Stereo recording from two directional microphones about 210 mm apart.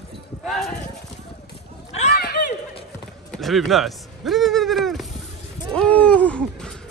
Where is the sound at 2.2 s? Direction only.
50° left (ahead or behind).